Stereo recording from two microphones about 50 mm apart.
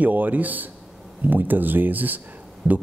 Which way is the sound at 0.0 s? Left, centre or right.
Right.